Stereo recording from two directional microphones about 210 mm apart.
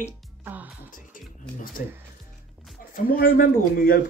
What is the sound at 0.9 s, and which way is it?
Music, 40° left (ahead or behind).